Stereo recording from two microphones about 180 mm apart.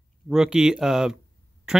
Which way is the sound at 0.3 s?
5° right (ahead or behind).